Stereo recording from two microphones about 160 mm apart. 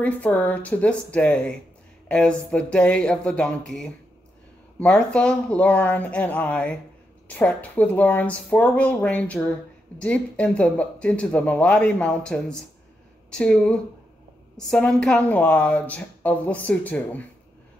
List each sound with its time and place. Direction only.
0.0 s speech: 10° left (ahead or behind)